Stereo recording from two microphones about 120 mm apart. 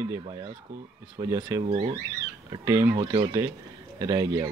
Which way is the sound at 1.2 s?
30° right (ahead or behind).